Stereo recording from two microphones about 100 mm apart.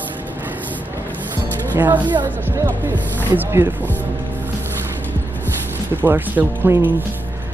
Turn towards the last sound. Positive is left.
turn(degrees=-20)  # may be behind; listen again after turning